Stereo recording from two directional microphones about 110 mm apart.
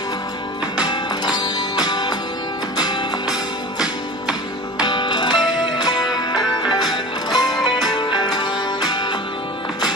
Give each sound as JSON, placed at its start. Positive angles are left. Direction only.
{"t": 0.8, "sound": "music", "side_deg": 40}
{"t": 4.7, "sound": "music", "side_deg": 40}